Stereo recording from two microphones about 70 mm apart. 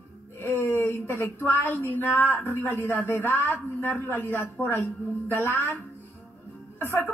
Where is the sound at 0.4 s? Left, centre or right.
Left.